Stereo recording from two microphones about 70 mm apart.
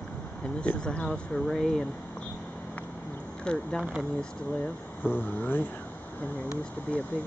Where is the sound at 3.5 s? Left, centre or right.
Centre.